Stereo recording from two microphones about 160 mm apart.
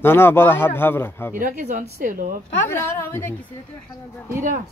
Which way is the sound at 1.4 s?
55° right (ahead or behind).